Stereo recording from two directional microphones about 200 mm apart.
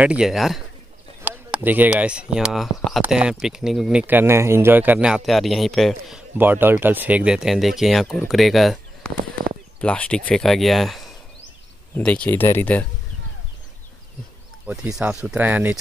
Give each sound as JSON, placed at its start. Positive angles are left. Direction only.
{"t": 0.0, "sound": "speech", "side_deg": -5}
{"t": 14.7, "sound": "speech", "side_deg": -5}